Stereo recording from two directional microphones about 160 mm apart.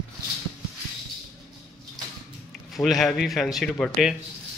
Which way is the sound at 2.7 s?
Centre (ahead or behind).